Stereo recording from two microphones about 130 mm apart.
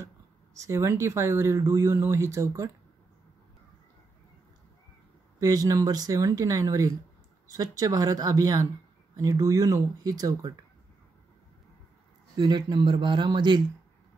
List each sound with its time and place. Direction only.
0.6 s speech: 20° right (ahead or behind)
5.4 s speech: 30° right (ahead or behind)
12.4 s a man's voice: 35° right (ahead or behind)